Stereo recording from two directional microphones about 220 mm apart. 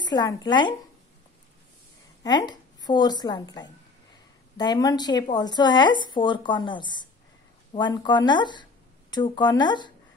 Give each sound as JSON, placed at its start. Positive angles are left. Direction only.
{"t": 0.0, "sound": "a woman's voice", "side_deg": 20}
{"t": 2.2, "sound": "a woman's voice", "side_deg": 20}